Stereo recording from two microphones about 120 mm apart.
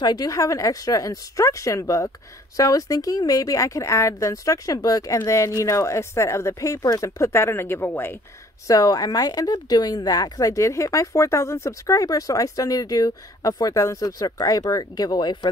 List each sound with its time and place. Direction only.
0.0 s speech: 35° left (ahead or behind); by 8.2 s 15° left (ahead or behind)
8.6 s speech: 30° left (ahead or behind)